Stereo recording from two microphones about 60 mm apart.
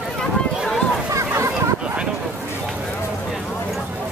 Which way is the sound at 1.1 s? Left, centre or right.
Right.